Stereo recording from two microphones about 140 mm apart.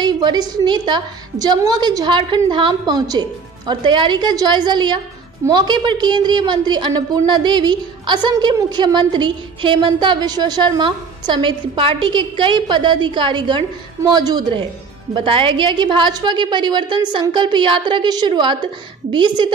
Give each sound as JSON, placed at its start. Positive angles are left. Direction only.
{"t": 0.0, "sound": "a woman's voice", "side_deg": -30}